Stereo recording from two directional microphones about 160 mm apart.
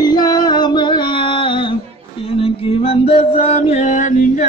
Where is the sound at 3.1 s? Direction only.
35° left (ahead or behind).